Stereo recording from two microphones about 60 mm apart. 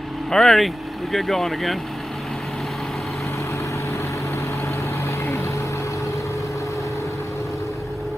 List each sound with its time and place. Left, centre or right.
0.3 s speech: centre
5.2 s vehicle: left